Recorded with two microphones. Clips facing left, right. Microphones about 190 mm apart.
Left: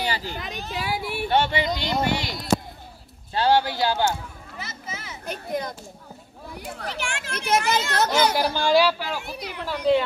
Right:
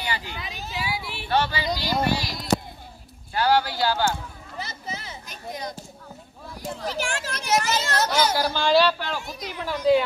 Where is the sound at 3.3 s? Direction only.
25° left (ahead or behind).